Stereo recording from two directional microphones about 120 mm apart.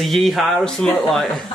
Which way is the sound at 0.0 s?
Centre (ahead or behind).